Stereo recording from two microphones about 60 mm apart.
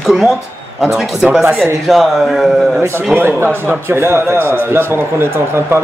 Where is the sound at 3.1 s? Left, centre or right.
Right.